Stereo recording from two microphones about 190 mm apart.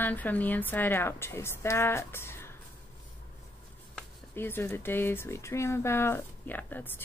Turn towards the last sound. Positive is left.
turn(degrees=10)  # may be behind; listen again after turning